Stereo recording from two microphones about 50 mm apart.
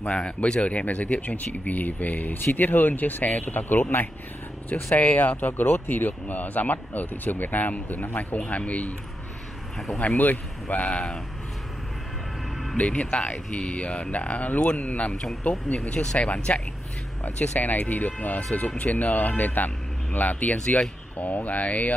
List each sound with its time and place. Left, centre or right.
0.1 s speech: left
4.9 s speech: left
9.9 s speech: left
10.9 s speech: centre
12.7 s speech: left
17.2 s speech: left
20.5 s speech: centre
21.2 s speech: left